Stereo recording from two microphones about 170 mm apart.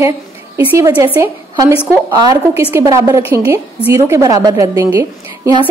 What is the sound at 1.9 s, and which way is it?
A woman's voice, 15° right (ahead or behind).